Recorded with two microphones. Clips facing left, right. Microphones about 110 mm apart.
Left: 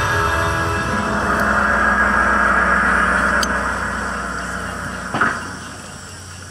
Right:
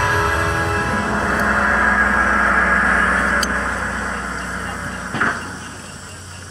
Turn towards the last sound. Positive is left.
turn(degrees=50)  # may be behind; listen again after turning